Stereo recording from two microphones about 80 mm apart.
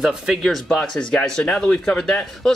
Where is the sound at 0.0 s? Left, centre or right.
Centre.